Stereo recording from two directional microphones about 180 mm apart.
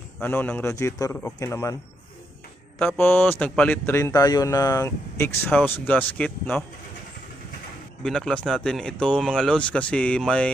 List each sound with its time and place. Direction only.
0.2 s speech: 10° left (ahead or behind)
3.0 s speech: 10° left (ahead or behind)
8.0 s speech: 5° left (ahead or behind)